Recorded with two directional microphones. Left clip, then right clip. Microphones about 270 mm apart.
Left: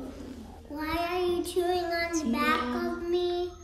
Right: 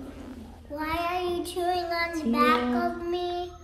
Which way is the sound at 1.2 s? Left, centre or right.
Centre.